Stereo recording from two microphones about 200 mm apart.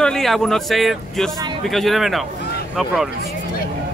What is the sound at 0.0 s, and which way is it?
Speech, centre (ahead or behind).